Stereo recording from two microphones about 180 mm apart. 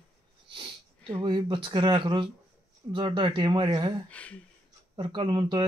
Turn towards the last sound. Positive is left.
turn(degrees=-25)  # may be behind; listen again after turning